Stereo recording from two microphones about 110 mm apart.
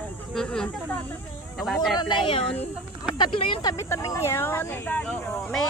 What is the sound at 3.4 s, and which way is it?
Speech, 45° left (ahead or behind).